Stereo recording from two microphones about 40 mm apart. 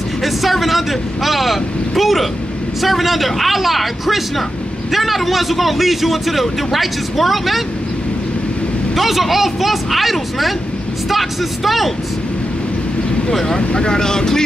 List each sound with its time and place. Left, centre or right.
0.2 s a man's voice: centre
8.9 s a man's voice: centre
13.3 s speech: centre
13.6 s speech: left